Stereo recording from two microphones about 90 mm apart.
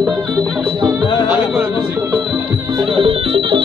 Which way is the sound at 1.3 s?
15° right (ahead or behind).